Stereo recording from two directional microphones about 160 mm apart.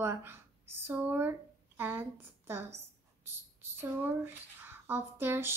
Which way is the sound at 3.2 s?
15° right (ahead or behind).